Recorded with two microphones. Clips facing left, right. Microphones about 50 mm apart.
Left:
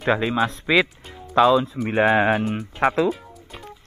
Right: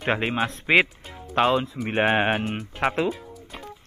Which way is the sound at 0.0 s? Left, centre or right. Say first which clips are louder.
Left 4 dB; right.